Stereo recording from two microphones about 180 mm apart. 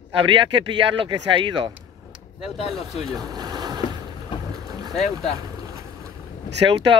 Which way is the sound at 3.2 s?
20° right (ahead or behind).